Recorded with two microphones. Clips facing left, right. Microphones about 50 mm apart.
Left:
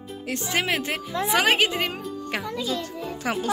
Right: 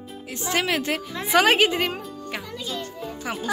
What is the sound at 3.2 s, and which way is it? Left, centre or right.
Speech, left.